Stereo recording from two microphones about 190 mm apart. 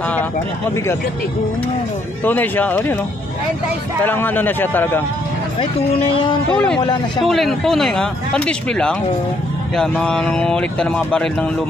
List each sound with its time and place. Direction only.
2.2 s a man's voice: 10° left (ahead or behind)
4.0 s a man's voice: 10° left (ahead or behind)
5.6 s speech: 30° left (ahead or behind)
6.5 s speech: 5° left (ahead or behind)